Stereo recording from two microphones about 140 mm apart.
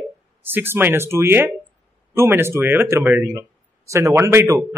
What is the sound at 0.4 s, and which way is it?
Speech, 15° right (ahead or behind).